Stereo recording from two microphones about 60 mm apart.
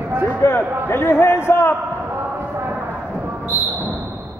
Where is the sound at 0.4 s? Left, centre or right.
Left.